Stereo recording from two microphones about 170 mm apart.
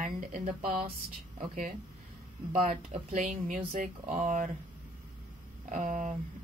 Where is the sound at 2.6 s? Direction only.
45° right (ahead or behind).